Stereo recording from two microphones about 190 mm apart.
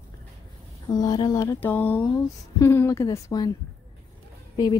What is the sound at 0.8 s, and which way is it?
Speech, 20° left (ahead or behind).